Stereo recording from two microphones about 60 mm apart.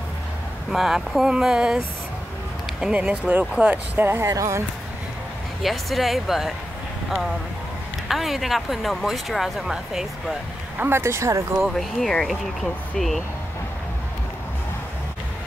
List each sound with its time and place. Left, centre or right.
0.7 s speech: centre
2.8 s speech: centre; by 4.2 s right
4.2 s speech: right
5.6 s speech: centre
8.1 s speech: centre
10.8 s speech: right
11.7 s speech: centre